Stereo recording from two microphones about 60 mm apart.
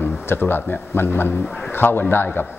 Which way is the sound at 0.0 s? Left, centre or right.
Left.